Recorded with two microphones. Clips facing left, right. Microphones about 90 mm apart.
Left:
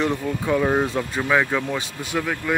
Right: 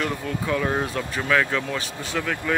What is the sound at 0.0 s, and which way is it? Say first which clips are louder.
Speech: left 4 dB; 20° left (ahead or behind).